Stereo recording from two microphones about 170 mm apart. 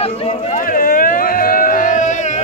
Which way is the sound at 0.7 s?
55° left (ahead or behind).